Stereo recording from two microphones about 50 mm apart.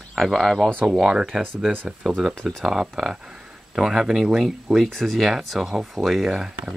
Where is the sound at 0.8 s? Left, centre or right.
Centre.